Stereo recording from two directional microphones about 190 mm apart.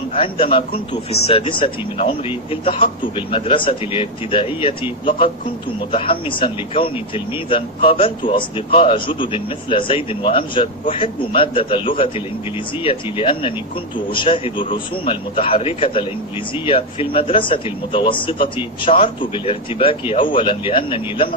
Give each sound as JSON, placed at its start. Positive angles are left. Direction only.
{"t": 0.2, "sound": "a man's voice", "side_deg": 25}
{"t": 5.9, "sound": "a man's voice", "side_deg": 30}